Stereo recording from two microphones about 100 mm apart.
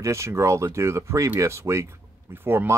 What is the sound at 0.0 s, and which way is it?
Speech, 30° right (ahead or behind).